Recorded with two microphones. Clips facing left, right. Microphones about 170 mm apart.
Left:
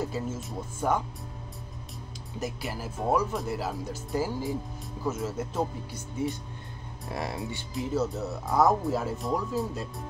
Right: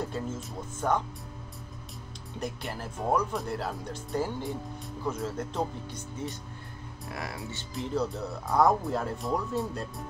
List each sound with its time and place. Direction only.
0.0 s speech: 5° left (ahead or behind)
2.3 s speech: 5° left (ahead or behind)
7.1 s speech: 25° left (ahead or behind)
7.7 s speech: 5° left (ahead or behind)